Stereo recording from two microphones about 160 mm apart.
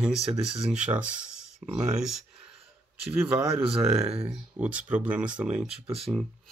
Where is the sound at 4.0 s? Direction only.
40° right (ahead or behind).